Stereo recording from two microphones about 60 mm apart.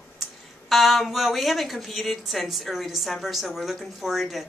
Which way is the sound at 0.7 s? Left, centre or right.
Centre.